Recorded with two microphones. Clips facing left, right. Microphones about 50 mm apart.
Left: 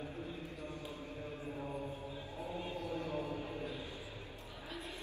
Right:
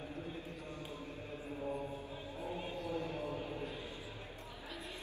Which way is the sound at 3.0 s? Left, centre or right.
Left.